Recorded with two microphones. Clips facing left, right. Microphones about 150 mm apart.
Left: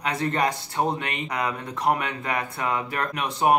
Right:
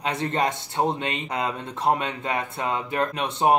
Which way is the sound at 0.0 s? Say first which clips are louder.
Even; 25° right (ahead or behind).